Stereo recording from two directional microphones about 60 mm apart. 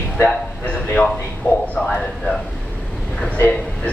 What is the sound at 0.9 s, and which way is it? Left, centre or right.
Speech, left.